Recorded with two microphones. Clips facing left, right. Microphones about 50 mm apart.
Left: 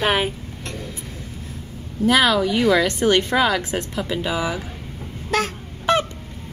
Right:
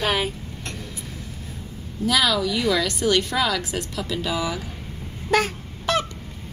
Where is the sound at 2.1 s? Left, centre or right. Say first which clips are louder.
Left 4 dB; left.